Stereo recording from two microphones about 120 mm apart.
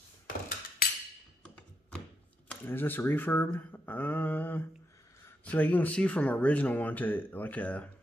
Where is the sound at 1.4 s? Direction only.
10° left (ahead or behind).